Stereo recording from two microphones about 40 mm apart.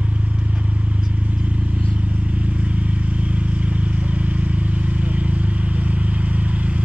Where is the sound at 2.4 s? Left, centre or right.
Right.